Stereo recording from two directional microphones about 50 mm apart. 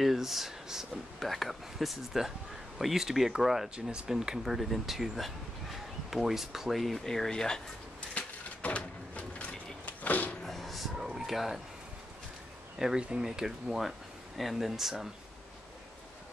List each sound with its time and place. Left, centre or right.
0.0 s speech: centre
4.5 s speech: centre
6.8 s speech: centre
8.1 s a sound: left
10.4 s a sound: centre
12.7 s speech: centre